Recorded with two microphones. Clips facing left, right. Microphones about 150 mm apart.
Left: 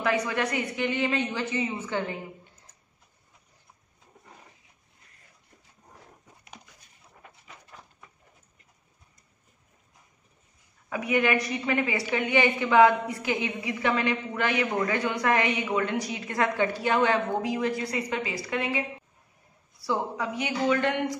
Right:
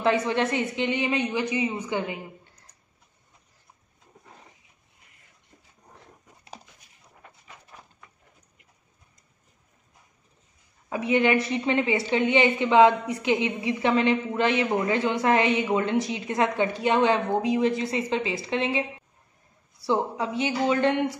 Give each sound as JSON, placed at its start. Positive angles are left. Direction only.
{"t": 0.0, "sound": "a woman's voice", "side_deg": -25}
{"t": 10.9, "sound": "a woman's voice", "side_deg": -25}